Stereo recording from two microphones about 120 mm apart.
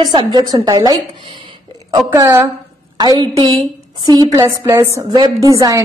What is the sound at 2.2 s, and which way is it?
Speech, 25° right (ahead or behind).